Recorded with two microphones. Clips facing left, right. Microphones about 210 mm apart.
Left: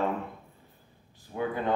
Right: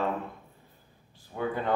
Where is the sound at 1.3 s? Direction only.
15° left (ahead or behind).